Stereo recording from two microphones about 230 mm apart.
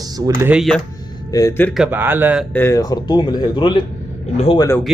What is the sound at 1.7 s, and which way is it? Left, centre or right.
Speech, centre.